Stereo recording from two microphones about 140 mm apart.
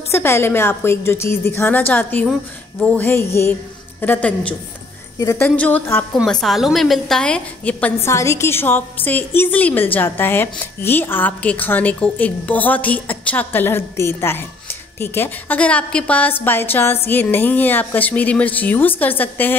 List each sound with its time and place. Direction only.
0.1 s a woman's voice: 15° left (ahead or behind)
6.1 s a woman's voice: centre (ahead or behind)